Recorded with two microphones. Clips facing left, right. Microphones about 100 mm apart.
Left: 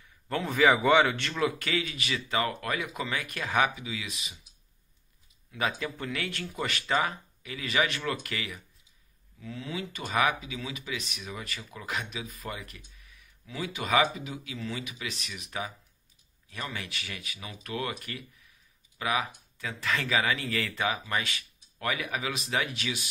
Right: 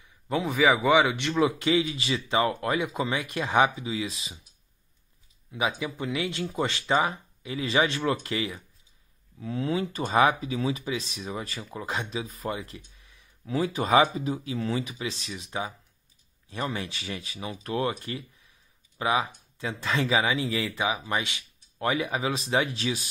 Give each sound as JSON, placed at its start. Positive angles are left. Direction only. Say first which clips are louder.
{"t": 0.0, "sound": "a man's voice", "louder": "right 4 dB", "side_deg": -15}
{"t": 5.5, "sound": "a man's voice", "louder": "right 2 dB", "side_deg": -15}